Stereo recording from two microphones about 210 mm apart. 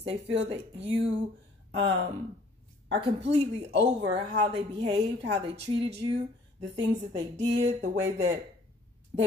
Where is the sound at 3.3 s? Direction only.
30° right (ahead or behind).